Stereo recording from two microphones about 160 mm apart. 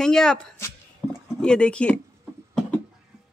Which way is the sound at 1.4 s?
5° left (ahead or behind).